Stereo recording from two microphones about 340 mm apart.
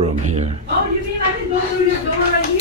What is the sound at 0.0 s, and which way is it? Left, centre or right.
Speech, centre.